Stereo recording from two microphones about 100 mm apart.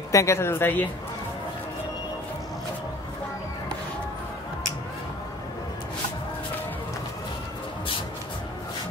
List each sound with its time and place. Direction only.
0.1 s speech: 30° left (ahead or behind)